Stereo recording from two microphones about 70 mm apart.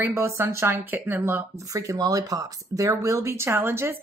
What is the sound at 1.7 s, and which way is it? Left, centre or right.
Speech, right.